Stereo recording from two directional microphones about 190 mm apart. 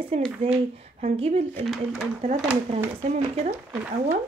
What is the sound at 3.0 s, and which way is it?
Speech, 35° right (ahead or behind).